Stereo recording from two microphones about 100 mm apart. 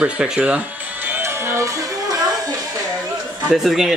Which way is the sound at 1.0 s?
20° right (ahead or behind).